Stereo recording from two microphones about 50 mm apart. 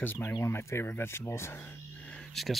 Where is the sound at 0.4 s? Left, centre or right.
Left.